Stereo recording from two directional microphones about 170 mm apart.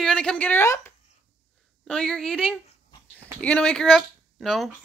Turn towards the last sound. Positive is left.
turn(degrees=0)  # may be behind; listen again after turning